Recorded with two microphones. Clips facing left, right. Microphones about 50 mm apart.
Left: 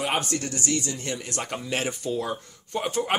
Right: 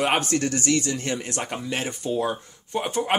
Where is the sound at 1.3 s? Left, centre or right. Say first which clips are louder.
Right 1 dB; centre.